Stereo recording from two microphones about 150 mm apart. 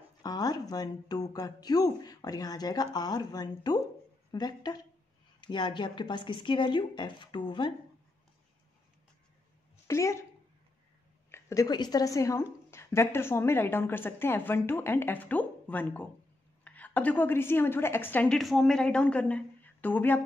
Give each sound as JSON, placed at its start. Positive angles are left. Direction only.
{"t": 0.2, "sound": "a woman's voice", "side_deg": 25}
{"t": 9.8, "sound": "speech", "side_deg": 20}
{"t": 11.2, "sound": "a woman's voice", "side_deg": 20}